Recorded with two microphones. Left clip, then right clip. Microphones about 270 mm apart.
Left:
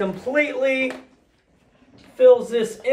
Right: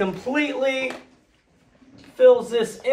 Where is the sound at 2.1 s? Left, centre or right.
Centre.